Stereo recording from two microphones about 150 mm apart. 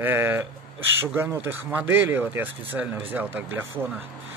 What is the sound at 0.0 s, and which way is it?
Speech, 15° right (ahead or behind).